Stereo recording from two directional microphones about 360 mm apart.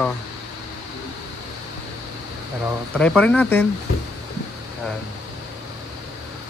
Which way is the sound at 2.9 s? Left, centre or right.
Centre.